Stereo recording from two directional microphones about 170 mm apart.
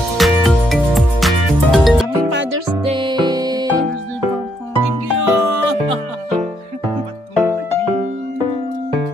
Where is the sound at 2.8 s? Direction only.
30° right (ahead or behind).